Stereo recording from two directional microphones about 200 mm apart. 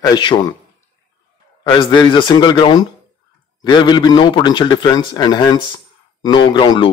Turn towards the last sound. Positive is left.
turn(degrees=25)  # may be behind; listen again after turning